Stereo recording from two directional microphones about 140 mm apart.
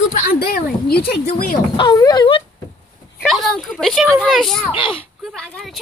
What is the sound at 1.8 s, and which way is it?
Speech, 30° left (ahead or behind).